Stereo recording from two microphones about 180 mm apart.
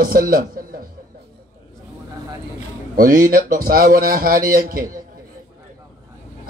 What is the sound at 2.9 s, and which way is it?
Speech, 55° right (ahead or behind).